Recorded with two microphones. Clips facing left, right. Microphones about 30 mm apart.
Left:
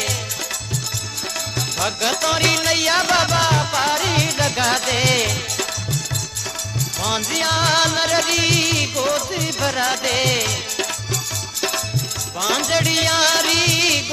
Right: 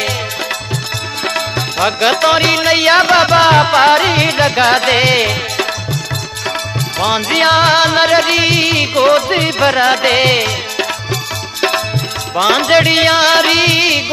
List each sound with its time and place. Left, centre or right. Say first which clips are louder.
1.8 s music: right 9 dB; right
7.0 s music: right 9 dB; right
12.4 s music: right 10 dB; right